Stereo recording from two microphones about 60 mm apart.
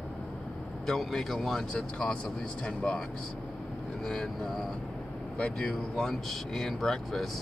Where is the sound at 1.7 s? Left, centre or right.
Centre.